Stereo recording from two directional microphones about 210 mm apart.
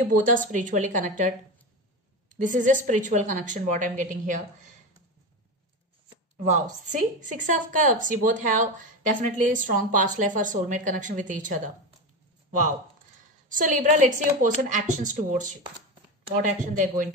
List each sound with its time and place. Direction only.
0.2 s a woman's voice: 40° right (ahead or behind)
2.3 s a woman's voice: 40° right (ahead or behind)
6.3 s a woman's voice: 35° right (ahead or behind)
12.4 s a sound: 35° right (ahead or behind)
13.5 s a woman's voice: 40° right (ahead or behind)